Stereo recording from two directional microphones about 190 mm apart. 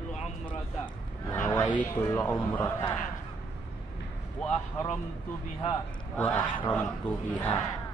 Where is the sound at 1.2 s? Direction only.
10° left (ahead or behind).